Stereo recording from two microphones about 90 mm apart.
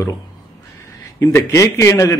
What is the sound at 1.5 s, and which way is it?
Speech, 35° left (ahead or behind).